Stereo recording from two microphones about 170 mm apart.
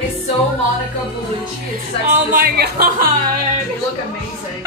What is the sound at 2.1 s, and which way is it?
Speech, 55° right (ahead or behind).